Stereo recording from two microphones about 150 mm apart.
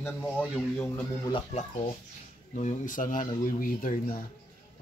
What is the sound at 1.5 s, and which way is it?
Speech, 45° left (ahead or behind).